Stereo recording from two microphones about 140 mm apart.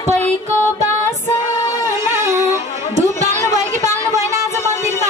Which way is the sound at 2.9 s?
55° right (ahead or behind).